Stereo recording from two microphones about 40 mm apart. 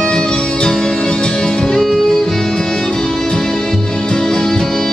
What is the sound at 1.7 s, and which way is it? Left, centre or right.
Music, centre.